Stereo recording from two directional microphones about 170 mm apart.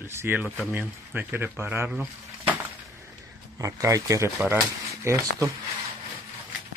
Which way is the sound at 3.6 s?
20° right (ahead or behind).